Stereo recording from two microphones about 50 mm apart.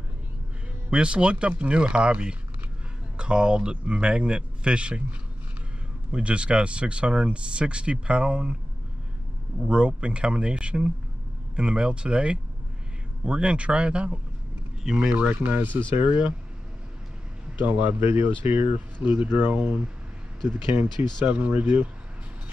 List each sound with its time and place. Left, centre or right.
0.8 s speech: right
6.1 s speech: right
9.7 s speech: right
14.8 s speech: centre
15.4 s speech: right
17.6 s speech: right